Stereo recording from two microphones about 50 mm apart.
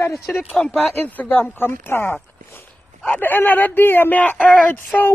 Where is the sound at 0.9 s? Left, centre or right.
Left.